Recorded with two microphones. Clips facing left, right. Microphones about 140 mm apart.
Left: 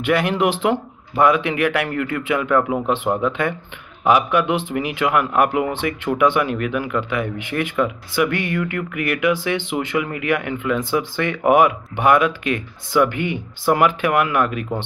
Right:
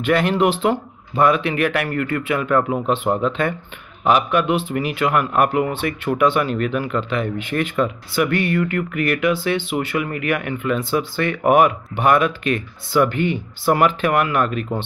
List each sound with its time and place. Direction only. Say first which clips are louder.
0.0 s speech: right 1 dB; 15° left (ahead or behind)
3.1 s speech: right 1 dB; 20° right (ahead or behind)
4.1 s speech: even; 15° left (ahead or behind)